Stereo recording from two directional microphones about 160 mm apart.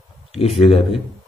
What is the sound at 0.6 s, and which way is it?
Speech, 40° left (ahead or behind).